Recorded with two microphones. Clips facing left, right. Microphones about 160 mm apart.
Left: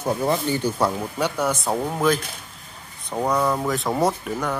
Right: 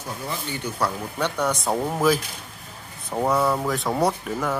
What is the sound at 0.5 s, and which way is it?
Speech, 30° left (ahead or behind).